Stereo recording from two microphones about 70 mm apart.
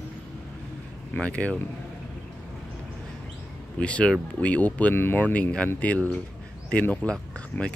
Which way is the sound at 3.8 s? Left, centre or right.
Centre.